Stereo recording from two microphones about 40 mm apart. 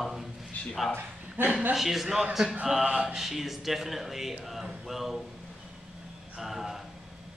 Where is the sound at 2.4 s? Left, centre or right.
Right.